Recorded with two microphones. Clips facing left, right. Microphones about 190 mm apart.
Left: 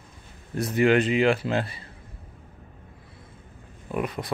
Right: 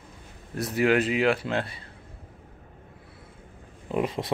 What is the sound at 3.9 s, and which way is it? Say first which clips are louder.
Speech: right 2 dB; 25° right (ahead or behind).